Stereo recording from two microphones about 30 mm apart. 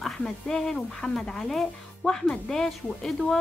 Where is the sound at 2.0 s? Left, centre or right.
Centre.